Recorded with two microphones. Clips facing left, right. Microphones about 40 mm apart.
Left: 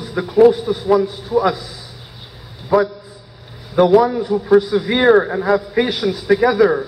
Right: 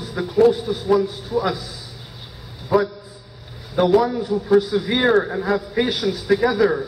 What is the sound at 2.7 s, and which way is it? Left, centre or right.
A man's voice, centre.